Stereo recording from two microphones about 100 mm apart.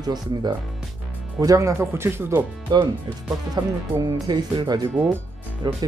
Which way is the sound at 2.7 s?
45° right (ahead or behind).